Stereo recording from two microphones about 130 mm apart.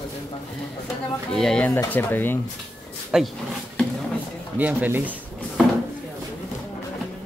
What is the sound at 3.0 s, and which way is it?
Speech, 5° right (ahead or behind).